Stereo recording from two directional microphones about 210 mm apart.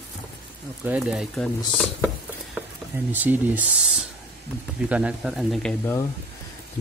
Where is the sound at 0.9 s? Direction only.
5° right (ahead or behind).